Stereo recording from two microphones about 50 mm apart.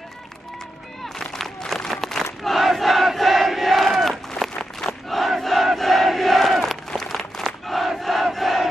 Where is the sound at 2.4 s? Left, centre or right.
Centre.